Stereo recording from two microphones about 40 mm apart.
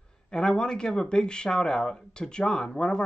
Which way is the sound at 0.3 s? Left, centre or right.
Centre.